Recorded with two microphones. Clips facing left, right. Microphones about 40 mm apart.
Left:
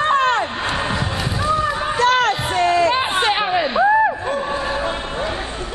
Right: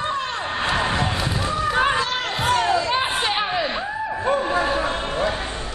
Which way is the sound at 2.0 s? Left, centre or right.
Left.